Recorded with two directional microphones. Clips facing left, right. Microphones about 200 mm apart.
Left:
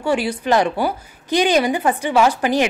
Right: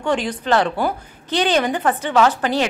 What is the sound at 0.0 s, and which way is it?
A woman's voice, 10° left (ahead or behind).